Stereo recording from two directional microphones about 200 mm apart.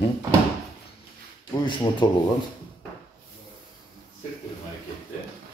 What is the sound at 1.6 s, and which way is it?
Speech, 25° left (ahead or behind).